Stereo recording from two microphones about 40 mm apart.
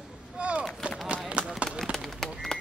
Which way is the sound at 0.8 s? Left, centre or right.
Right.